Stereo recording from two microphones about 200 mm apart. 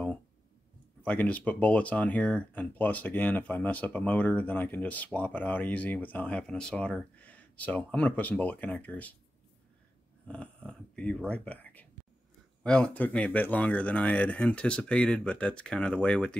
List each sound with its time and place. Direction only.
1.0 s speech: 10° left (ahead or behind)
10.2 s snoring: 5° left (ahead or behind)
10.7 s speech: 5° left (ahead or behind)